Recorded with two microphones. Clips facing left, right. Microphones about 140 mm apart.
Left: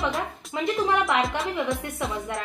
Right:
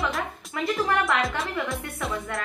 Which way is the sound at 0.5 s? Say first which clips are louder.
Left 1 dB; 20° left (ahead or behind).